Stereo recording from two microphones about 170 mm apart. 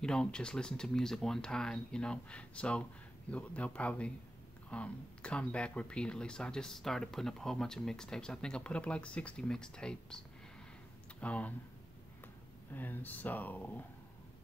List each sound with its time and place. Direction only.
0.0 s speech: 5° left (ahead or behind)
12.7 s speech: 10° left (ahead or behind)